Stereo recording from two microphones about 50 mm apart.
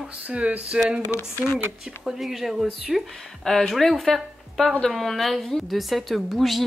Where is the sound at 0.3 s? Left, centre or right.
Right.